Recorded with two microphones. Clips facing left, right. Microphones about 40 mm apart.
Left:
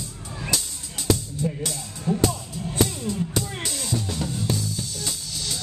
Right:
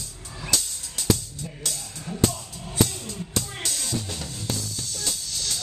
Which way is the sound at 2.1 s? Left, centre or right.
Left.